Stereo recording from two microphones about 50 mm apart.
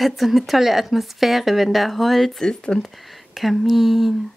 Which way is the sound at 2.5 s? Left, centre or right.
Centre.